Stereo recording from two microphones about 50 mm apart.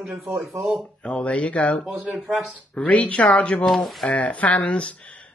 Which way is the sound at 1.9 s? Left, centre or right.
Centre.